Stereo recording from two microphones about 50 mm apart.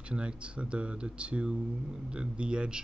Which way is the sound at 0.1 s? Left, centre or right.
Right.